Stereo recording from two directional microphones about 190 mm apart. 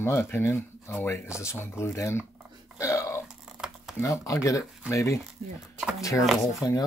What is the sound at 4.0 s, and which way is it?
Speech, 15° left (ahead or behind).